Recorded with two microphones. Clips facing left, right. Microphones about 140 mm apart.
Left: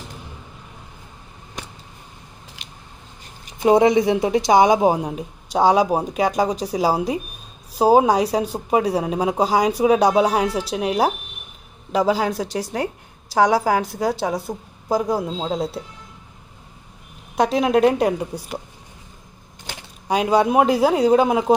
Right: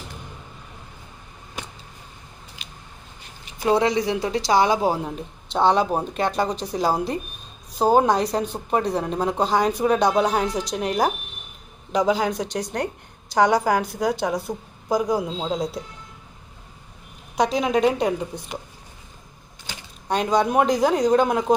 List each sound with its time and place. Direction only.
3.5 s a woman's voice: 20° left (ahead or behind); by 15.8 s centre (ahead or behind)
17.4 s a woman's voice: centre (ahead or behind)
20.1 s a woman's voice: 10° left (ahead or behind)